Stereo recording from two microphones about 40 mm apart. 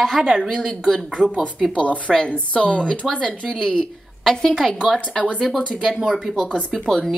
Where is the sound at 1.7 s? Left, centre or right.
Left.